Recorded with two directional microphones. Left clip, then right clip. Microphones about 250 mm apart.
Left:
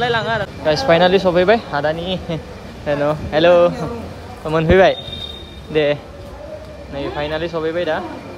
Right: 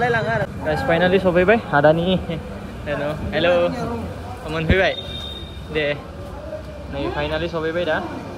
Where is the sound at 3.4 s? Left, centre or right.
Centre.